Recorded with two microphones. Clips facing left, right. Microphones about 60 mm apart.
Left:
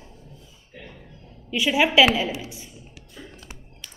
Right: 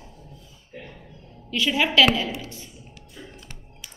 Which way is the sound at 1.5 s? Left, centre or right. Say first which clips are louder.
Left 2 dB; centre.